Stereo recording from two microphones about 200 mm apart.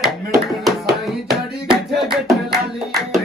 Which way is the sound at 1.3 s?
Centre (ahead or behind).